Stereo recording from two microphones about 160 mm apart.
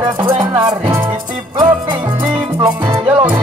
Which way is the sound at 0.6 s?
25° right (ahead or behind).